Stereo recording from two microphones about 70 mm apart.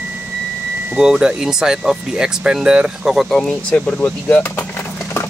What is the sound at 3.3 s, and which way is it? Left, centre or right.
Speech, centre.